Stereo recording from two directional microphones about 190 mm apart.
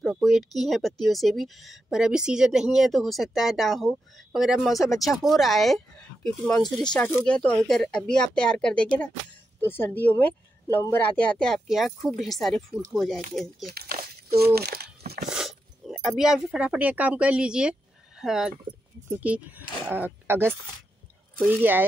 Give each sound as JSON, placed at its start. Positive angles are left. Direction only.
{"t": 0.0, "sound": "speech", "side_deg": 0}
{"t": 13.7, "sound": "speech", "side_deg": -50}
{"t": 15.2, "sound": "speech", "side_deg": 0}